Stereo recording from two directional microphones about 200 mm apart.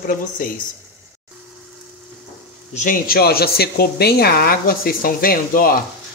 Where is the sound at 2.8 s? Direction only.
45° left (ahead or behind).